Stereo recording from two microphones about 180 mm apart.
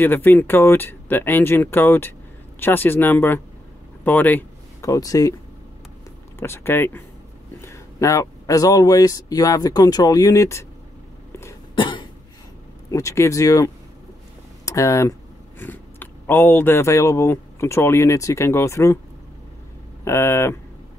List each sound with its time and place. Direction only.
0.0 s speech: 10° left (ahead or behind)
6.4 s speech: 15° left (ahead or behind)
11.7 s cough: 25° left (ahead or behind)
12.9 s speech: 15° left (ahead or behind)
20.1 s speech: 15° left (ahead or behind)